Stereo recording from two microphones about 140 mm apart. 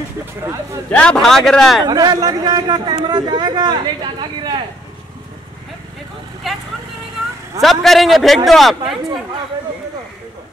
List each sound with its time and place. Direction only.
0.8 s speech: 10° left (ahead or behind)
1.9 s a man's voice: 30° right (ahead or behind)
7.6 s speech: centre (ahead or behind)